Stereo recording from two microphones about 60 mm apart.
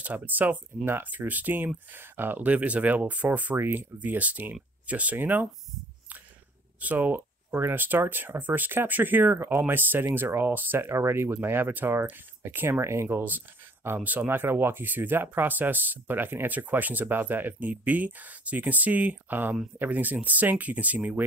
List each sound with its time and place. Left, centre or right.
0.0 s speech: right
3.5 s speech: right
4.0 s speech: right
6.8 s speech: right
7.5 s speech: right
14.0 s speech: right